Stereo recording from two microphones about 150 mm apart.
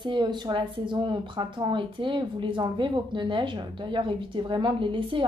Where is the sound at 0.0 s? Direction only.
30° right (ahead or behind).